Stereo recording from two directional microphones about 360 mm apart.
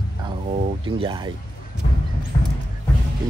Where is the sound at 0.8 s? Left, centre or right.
Centre.